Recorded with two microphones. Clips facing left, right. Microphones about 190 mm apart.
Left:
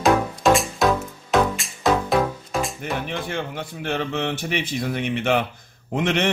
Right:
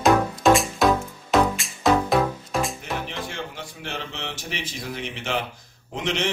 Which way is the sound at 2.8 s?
55° left (ahead or behind).